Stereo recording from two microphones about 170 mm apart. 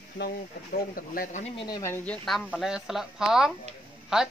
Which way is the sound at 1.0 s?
55° left (ahead or behind).